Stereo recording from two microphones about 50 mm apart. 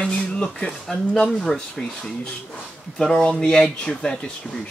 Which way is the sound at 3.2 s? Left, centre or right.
Centre.